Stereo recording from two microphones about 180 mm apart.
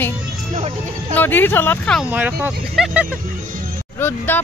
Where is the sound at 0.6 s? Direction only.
40° right (ahead or behind).